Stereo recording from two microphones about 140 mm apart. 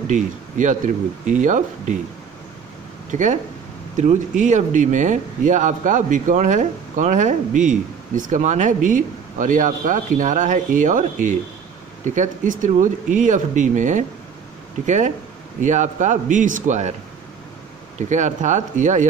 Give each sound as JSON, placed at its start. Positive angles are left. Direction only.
{"t": 0.1, "sound": "speech", "side_deg": -65}
{"t": 3.1, "sound": "speech", "side_deg": -65}
{"t": 17.9, "sound": "speech", "side_deg": -60}